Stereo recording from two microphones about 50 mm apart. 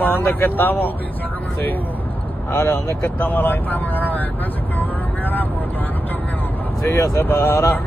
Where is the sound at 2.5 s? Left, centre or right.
Left.